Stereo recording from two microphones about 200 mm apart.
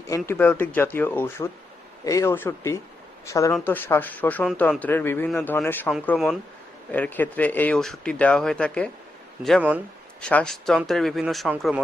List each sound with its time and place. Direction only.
0.1 s speech: 10° left (ahead or behind)
6.1 s speech: centre (ahead or behind)
6.9 s speech: 10° left (ahead or behind)